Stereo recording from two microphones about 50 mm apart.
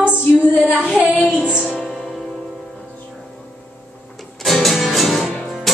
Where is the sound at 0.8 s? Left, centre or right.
Centre.